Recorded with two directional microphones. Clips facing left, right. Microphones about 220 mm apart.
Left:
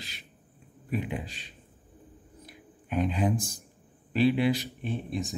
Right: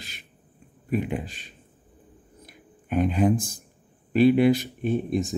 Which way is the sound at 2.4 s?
50° right (ahead or behind).